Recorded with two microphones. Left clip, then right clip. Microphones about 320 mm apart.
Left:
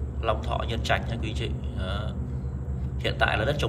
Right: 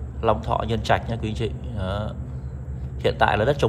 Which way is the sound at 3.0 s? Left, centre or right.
Centre.